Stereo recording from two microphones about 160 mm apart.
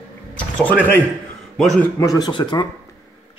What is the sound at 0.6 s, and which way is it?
A man's voice, 10° left (ahead or behind).